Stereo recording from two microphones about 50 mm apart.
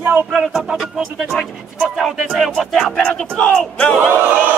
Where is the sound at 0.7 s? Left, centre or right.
Centre.